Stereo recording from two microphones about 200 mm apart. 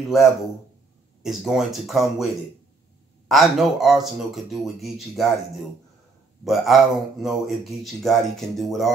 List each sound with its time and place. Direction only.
1.2 s speech: centre (ahead or behind)
3.3 s speech: centre (ahead or behind)
6.4 s speech: centre (ahead or behind)